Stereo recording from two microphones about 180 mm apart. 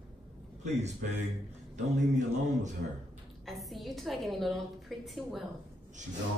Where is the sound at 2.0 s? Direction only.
40° right (ahead or behind).